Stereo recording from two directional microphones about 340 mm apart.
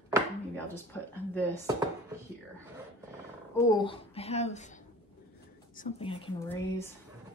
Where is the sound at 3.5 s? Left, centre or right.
Centre.